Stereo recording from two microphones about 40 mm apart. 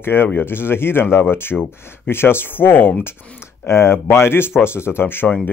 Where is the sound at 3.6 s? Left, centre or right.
Left.